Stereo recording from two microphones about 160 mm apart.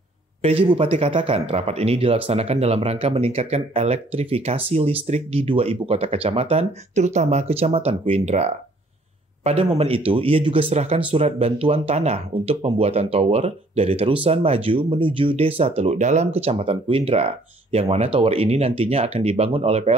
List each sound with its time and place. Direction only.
0.4 s speech: 35° right (ahead or behind)